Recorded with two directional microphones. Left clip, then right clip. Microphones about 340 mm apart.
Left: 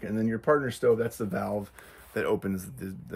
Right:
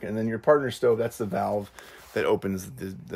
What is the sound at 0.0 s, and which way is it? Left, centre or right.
Speech, centre.